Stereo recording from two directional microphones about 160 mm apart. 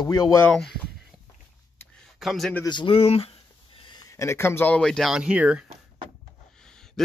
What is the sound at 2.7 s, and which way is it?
Speech, 30° left (ahead or behind).